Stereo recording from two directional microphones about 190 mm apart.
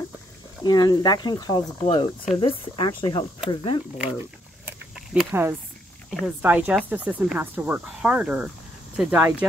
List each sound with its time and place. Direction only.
0.7 s speech: 20° left (ahead or behind)
4.6 s a sound: centre (ahead or behind)
5.3 s speech: 10° right (ahead or behind)
6.0 s speech: centre (ahead or behind)